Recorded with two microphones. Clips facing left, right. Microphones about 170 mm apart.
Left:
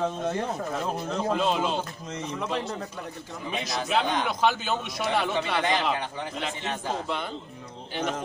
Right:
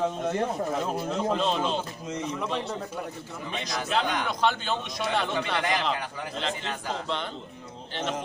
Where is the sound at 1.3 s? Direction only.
10° left (ahead or behind).